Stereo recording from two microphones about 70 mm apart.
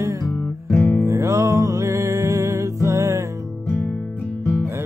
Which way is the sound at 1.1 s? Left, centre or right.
Right.